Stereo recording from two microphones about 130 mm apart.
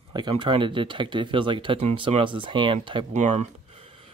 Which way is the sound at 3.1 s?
65° right (ahead or behind).